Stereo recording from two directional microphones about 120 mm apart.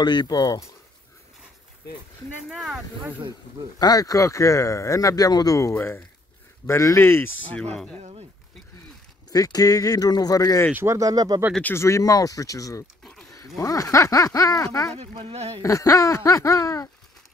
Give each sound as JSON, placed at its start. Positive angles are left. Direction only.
{"t": 0.0, "sound": "speech", "side_deg": 40}
{"t": 2.5, "sound": "speech", "side_deg": 0}
{"t": 3.8, "sound": "speech", "side_deg": 30}
{"t": 7.7, "sound": "speech", "side_deg": 5}
{"t": 8.0, "sound": "speech", "side_deg": -50}
{"t": 9.3, "sound": "speech", "side_deg": 30}
{"t": 10.7, "sound": "speech", "side_deg": -20}
{"t": 11.6, "sound": "speech", "side_deg": 20}
{"t": 15.1, "sound": "speech", "side_deg": -55}
{"t": 15.6, "sound": "speech", "side_deg": 25}